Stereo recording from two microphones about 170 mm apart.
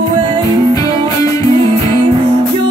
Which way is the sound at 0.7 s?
20° left (ahead or behind).